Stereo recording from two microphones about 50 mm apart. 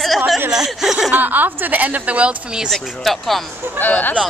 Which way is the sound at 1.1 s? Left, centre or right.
Right.